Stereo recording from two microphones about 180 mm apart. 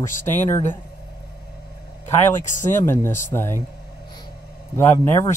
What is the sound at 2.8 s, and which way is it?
Speech, 15° left (ahead or behind).